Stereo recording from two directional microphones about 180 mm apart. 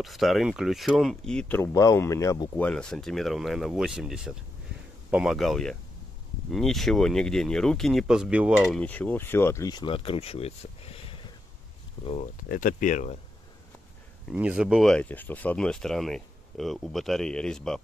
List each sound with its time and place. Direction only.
0.0 s speech: centre (ahead or behind); by 2.5 s 15° left (ahead or behind)
2.5 s speech: 5° left (ahead or behind)
8.8 s speech: 10° left (ahead or behind); by 11.3 s 30° left (ahead or behind)
12.1 s speech: 45° left (ahead or behind)
14.3 s speech: 5° right (ahead or behind)